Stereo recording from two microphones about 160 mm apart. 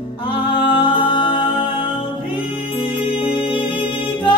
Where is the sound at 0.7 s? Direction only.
35° left (ahead or behind).